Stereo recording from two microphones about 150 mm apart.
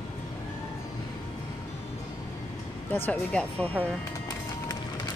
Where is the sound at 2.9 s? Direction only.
10° left (ahead or behind).